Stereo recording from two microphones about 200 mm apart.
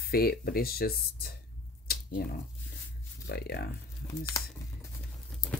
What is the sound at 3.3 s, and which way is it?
Speech, 55° left (ahead or behind).